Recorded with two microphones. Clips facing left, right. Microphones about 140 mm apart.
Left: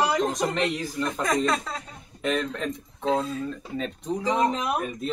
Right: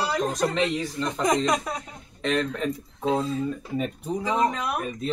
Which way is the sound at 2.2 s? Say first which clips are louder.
Right 1 dB; centre (ahead or behind).